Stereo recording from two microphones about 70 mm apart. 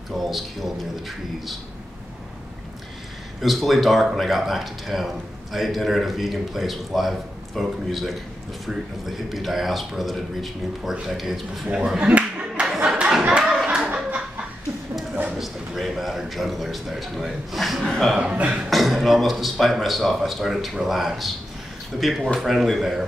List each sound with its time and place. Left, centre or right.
0.1 s speech: centre
3.3 s speech: centre
12.1 s clapping: centre
13.4 s clapping: centre
13.8 s a sound: right
15.3 s a man's voice: centre
18.3 s speech: centre
18.7 s speech: centre